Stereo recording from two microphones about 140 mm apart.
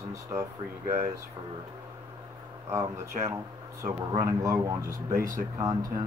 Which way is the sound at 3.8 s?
25° right (ahead or behind).